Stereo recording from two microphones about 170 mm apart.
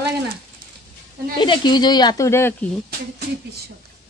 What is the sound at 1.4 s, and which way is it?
Speech, 25° left (ahead or behind).